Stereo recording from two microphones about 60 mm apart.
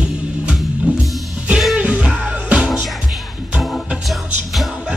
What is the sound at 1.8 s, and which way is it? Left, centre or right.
Music, right.